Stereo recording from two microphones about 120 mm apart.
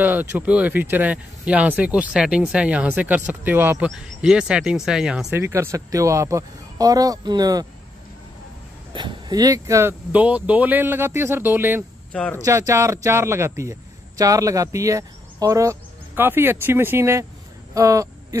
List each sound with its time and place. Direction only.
0.0 s speech: 15° right (ahead or behind)
4.2 s speech: 5° right (ahead or behind)
5.3 s a man's voice: 20° right (ahead or behind)
8.9 s speech: 35° right (ahead or behind)
10.1 s speech: 10° right (ahead or behind)
12.1 s speech: 10° left (ahead or behind)
12.4 s a man's voice: 25° right (ahead or behind)